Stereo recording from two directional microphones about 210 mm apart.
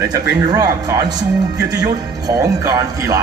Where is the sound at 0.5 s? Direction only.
20° right (ahead or behind).